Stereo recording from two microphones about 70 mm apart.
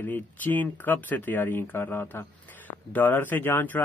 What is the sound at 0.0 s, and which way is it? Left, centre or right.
Speech, left.